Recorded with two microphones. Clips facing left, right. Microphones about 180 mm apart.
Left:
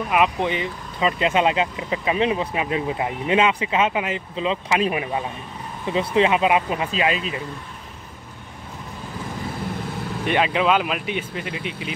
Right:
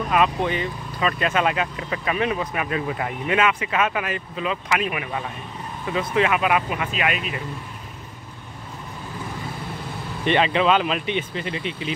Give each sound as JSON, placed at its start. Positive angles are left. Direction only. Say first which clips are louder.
{"t": 0.1, "sound": "speech", "louder": "even", "side_deg": 15}
{"t": 10.2, "sound": "speech", "louder": "right 1 dB", "side_deg": 5}